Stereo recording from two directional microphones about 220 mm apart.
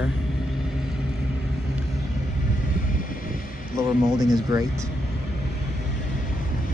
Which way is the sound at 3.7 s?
15° right (ahead or behind).